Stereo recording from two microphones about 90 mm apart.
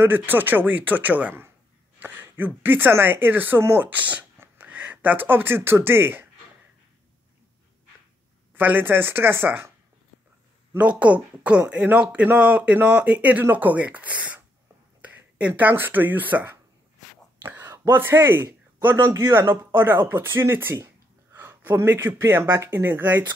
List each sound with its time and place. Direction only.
0.0 s speech: 25° right (ahead or behind)
8.5 s speech: 20° right (ahead or behind)
10.8 s speech: 15° right (ahead or behind)